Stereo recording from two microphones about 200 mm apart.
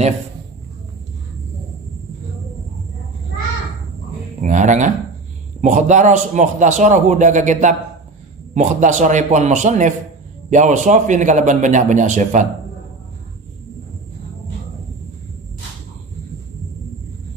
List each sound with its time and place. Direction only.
4.4 s a man's voice: 40° right (ahead or behind)